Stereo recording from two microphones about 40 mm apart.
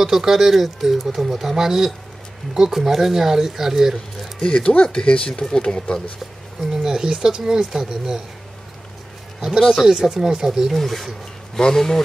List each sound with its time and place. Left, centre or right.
0.0 s speech: centre
4.5 s speech: left
6.7 s speech: centre
9.6 s speech: centre
10.7 s speech: centre